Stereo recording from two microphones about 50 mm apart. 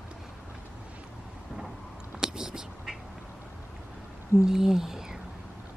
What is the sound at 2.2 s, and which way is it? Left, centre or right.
Whispering, centre.